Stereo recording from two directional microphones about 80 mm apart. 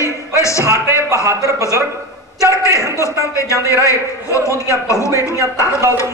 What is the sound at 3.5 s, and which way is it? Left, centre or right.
Speech, right.